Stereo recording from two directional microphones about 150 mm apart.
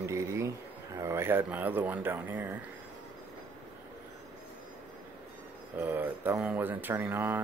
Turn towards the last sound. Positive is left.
turn(degrees=-10)  # may be behind; listen again after turning